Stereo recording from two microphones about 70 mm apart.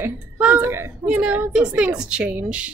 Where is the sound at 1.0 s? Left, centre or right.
Right.